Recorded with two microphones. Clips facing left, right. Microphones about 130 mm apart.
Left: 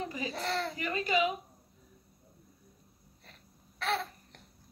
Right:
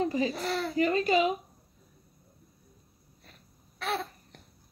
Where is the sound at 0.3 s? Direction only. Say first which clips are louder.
Right 3 dB; 5° right (ahead or behind).